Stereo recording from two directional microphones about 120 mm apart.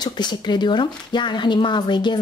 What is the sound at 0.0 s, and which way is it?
Speech, 35° left (ahead or behind).